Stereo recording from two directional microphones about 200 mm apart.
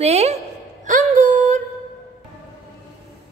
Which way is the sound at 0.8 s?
40° right (ahead or behind).